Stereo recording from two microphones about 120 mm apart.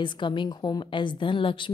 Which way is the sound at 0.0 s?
40° left (ahead or behind).